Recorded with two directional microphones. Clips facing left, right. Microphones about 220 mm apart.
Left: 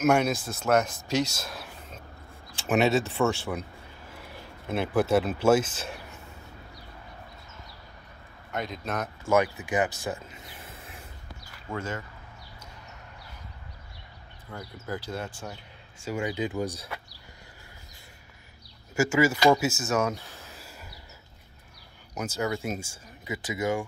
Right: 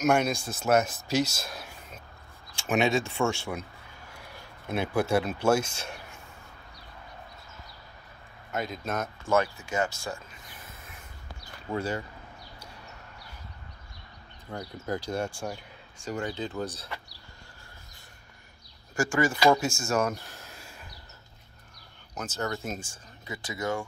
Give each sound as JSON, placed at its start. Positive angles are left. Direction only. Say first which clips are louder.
{"t": 0.0, "sound": "speech", "louder": "left 2 dB", "side_deg": 5}
{"t": 2.7, "sound": "speech", "louder": "left 2 dB", "side_deg": 5}
{"t": 4.6, "sound": "speech", "louder": "left 2 dB", "side_deg": 0}
{"t": 8.5, "sound": "speech", "louder": "even", "side_deg": -5}
{"t": 9.3, "sound": "speech", "louder": "left 2 dB", "side_deg": 15}
{"t": 11.7, "sound": "speech", "louder": "right 3 dB", "side_deg": -35}
{"t": 14.5, "sound": "speech", "louder": "right 3 dB", "side_deg": -40}
{"t": 15.0, "sound": "speech", "louder": "right 5 dB", "side_deg": -15}
{"t": 16.0, "sound": "speech", "louder": "left 3 dB", "side_deg": 10}
{"t": 18.9, "sound": "speech", "louder": "left 3 dB", "side_deg": 5}
{"t": 22.1, "sound": "speech", "louder": "left 3 dB", "side_deg": 10}